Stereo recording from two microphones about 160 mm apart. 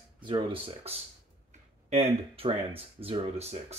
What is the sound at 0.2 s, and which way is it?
Speech, 30° right (ahead or behind).